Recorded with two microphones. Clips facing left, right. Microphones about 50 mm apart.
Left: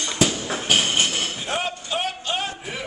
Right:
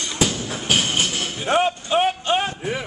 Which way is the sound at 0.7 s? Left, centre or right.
Centre.